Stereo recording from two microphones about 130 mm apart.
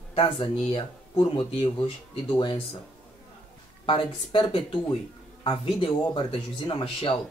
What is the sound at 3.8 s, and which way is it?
Speech, 40° left (ahead or behind).